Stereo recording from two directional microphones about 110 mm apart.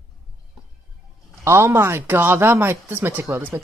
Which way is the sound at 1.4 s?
25° right (ahead or behind).